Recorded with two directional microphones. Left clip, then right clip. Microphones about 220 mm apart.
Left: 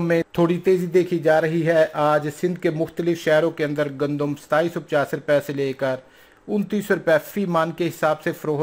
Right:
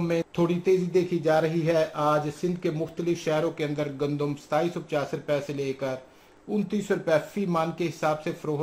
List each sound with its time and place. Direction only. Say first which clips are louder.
0.0 s speech: left 6 dB; 20° left (ahead or behind)